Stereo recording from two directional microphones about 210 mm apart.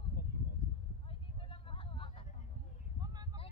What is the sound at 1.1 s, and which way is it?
Vehicle, 25° left (ahead or behind).